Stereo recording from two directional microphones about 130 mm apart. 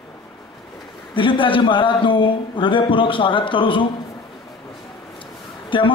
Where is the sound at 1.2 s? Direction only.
40° left (ahead or behind).